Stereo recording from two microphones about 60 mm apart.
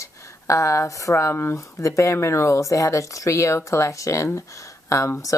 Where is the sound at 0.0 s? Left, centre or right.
Left.